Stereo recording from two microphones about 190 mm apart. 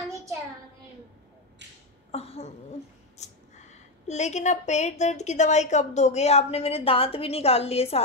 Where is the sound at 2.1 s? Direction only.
30° left (ahead or behind).